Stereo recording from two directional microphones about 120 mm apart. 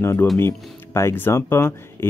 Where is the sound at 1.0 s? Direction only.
20° left (ahead or behind).